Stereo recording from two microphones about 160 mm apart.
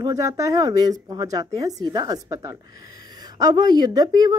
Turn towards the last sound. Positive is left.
turn(degrees=-25)  # may be behind; listen again after turning